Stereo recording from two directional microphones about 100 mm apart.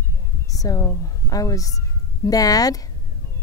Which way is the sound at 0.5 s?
35° left (ahead or behind).